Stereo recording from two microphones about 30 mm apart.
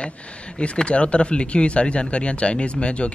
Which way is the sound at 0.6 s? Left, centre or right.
Left.